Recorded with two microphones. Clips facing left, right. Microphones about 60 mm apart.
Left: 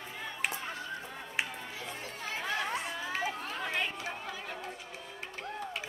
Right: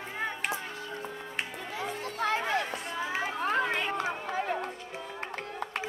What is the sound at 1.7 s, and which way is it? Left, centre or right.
Music, right.